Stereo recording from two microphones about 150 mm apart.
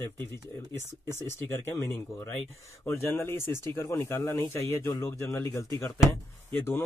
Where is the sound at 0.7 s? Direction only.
15° left (ahead or behind).